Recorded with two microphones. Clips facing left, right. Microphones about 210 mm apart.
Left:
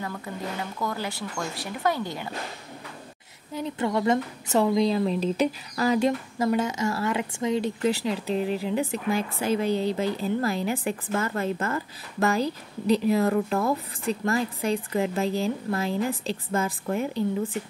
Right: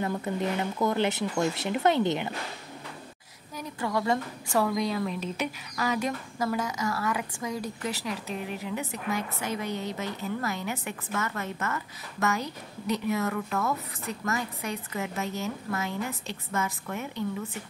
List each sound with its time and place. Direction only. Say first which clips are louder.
0.0 s speech: right 4 dB; 20° right (ahead or behind)
3.5 s a woman's voice: left 4 dB; 25° left (ahead or behind)